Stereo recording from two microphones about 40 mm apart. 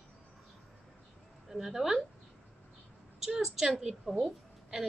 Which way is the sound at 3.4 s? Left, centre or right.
Centre.